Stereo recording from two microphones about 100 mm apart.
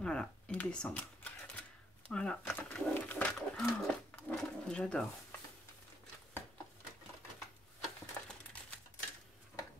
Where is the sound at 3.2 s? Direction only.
Centre (ahead or behind).